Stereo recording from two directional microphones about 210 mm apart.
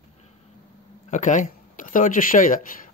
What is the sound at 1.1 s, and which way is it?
Speech, 35° left (ahead or behind).